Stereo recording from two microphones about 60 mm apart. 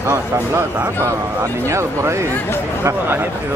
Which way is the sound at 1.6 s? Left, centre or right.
Right.